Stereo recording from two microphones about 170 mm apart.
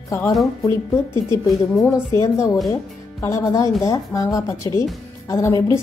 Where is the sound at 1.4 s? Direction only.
Centre (ahead or behind).